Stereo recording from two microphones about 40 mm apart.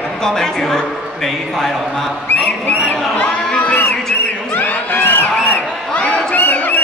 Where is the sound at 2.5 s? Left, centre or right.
Left.